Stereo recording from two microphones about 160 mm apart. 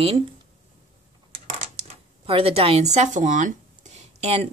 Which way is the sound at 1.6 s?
40° right (ahead or behind).